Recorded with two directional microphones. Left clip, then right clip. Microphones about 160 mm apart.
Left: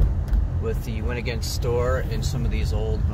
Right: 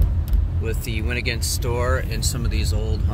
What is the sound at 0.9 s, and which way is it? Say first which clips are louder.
Speech: right 4 dB; 50° right (ahead or behind).